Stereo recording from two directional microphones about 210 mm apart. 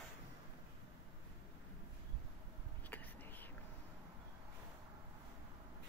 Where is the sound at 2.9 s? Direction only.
10° left (ahead or behind).